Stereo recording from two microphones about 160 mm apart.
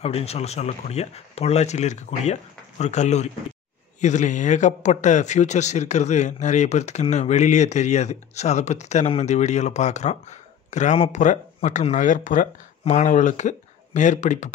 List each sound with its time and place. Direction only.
0.0 s speech: 40° left (ahead or behind)